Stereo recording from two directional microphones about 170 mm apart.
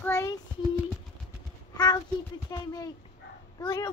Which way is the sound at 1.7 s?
25° left (ahead or behind).